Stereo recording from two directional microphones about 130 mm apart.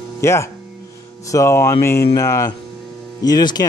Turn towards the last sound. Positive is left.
turn(degrees=30)  # may be behind; listen again after turning